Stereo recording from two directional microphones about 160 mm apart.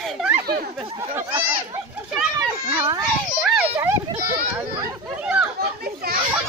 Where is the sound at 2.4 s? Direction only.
25° right (ahead or behind).